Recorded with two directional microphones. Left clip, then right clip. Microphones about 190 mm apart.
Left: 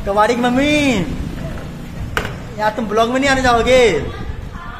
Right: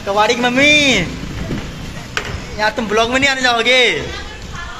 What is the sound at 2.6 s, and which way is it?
A man's voice, 10° left (ahead or behind).